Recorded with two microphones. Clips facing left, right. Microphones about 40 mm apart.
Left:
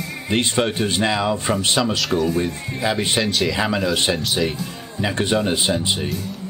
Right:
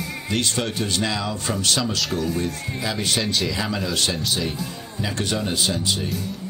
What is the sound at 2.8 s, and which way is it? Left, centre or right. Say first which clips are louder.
Speech: left 5 dB; left.